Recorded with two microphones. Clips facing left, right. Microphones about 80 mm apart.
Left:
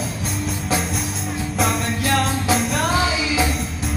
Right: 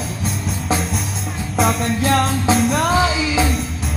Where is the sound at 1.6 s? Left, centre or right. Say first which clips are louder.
Right 4 dB; centre.